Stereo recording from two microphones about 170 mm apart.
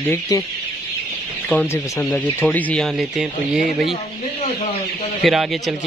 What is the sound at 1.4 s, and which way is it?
Speech, 15° left (ahead or behind).